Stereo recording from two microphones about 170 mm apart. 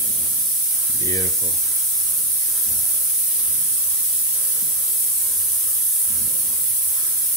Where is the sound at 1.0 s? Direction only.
20° left (ahead or behind).